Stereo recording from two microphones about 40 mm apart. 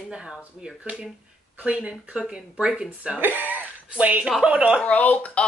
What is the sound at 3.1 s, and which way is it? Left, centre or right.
Speech, right.